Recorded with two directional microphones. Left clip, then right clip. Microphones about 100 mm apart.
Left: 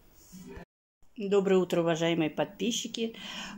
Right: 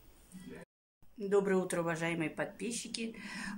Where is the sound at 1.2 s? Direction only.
15° left (ahead or behind).